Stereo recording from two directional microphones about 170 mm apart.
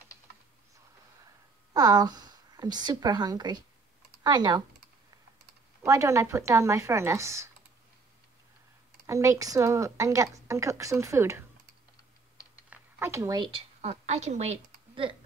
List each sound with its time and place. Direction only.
1.7 s a woman's voice: 20° right (ahead or behind)
5.9 s a woman's voice: 20° right (ahead or behind)
9.0 s a woman's voice: 20° right (ahead or behind)
12.6 s a sound: 15° right (ahead or behind)
13.5 s a woman's voice: 35° right (ahead or behind)